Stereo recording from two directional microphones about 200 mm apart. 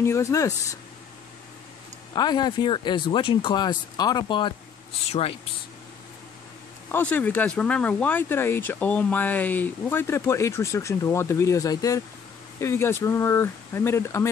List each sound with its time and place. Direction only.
0.0 s speech: 15° left (ahead or behind)
2.1 s speech: 20° left (ahead or behind)
6.9 s speech: 10° left (ahead or behind)